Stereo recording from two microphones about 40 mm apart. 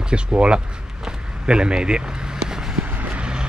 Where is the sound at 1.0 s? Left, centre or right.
Right.